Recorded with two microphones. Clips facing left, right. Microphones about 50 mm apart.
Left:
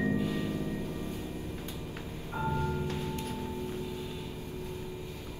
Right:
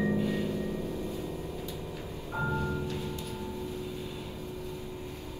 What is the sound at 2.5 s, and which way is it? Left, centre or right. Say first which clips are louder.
Music: left 1 dB; right.